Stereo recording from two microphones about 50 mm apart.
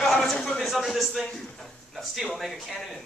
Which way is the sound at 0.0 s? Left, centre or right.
Centre.